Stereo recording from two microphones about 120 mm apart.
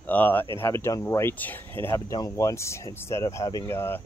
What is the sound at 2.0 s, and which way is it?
Speech, 30° left (ahead or behind).